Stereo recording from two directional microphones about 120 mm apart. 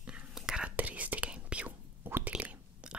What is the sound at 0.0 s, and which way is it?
Whispering, 10° right (ahead or behind).